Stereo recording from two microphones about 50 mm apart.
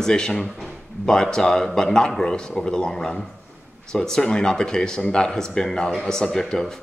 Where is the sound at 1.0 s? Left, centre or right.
Centre.